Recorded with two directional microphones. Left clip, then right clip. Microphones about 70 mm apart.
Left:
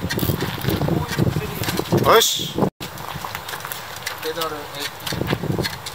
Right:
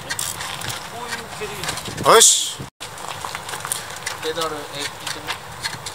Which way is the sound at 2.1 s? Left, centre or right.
Centre.